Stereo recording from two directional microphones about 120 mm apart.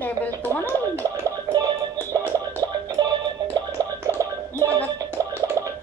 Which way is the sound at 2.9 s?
35° right (ahead or behind).